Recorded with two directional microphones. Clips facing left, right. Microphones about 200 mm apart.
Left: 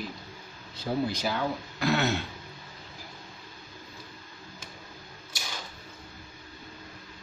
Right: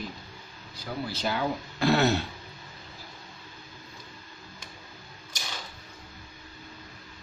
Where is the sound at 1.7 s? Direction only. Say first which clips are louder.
Right 4 dB; 35° right (ahead or behind).